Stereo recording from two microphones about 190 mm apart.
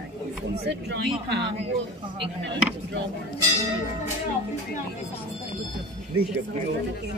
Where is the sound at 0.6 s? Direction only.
60° right (ahead or behind).